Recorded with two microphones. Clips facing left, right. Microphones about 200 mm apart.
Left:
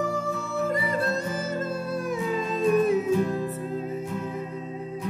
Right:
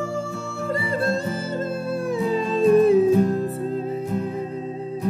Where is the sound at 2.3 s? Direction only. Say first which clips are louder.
Right 6 dB; 30° right (ahead or behind).